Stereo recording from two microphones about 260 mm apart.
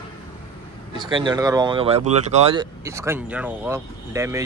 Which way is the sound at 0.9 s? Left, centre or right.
Centre.